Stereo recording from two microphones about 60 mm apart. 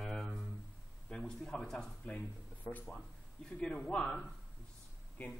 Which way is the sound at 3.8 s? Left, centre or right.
Centre.